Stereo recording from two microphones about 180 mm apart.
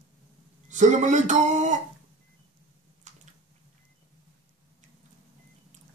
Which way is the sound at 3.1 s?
40° right (ahead or behind).